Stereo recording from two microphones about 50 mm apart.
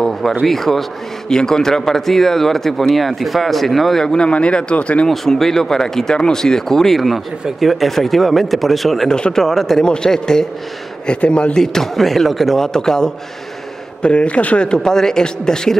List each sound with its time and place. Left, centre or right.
0.5 s speech: centre
4.0 s speech: centre
5.0 s speech: centre
9.1 s speech: centre
11.6 s speech: centre
14.0 s speech: left